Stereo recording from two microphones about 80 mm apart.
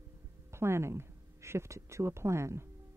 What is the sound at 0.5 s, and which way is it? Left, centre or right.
A woman's voice, right.